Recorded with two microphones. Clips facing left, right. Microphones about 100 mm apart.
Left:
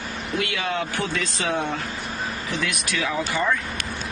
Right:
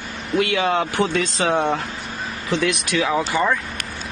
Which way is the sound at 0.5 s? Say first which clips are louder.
Right 9 dB; 60° right (ahead or behind).